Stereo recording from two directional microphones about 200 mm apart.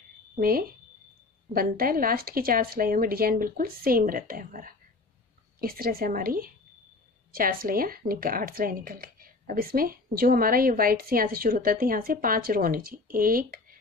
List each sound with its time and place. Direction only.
0.4 s a woman's voice: 45° right (ahead or behind)